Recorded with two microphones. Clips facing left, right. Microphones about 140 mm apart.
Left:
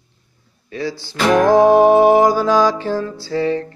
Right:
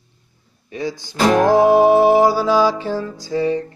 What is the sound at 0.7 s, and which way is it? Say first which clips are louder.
Music: left 1 dB; 15° right (ahead or behind).